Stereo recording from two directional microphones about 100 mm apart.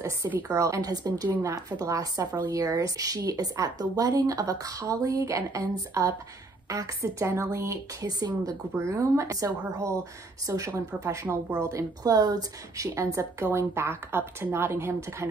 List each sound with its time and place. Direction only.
0.4 s a woman's voice: 35° right (ahead or behind)